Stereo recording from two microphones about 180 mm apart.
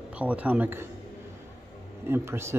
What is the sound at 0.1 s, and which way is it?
Speech, 10° right (ahead or behind).